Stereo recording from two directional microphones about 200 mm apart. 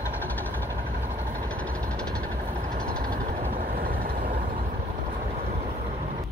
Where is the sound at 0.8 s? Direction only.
40° right (ahead or behind).